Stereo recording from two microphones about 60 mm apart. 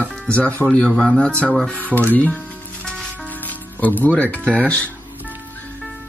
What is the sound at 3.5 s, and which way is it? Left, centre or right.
Music, left.